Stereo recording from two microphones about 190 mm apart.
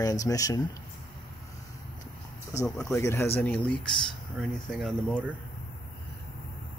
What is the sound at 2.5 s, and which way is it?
Speech, 15° left (ahead or behind).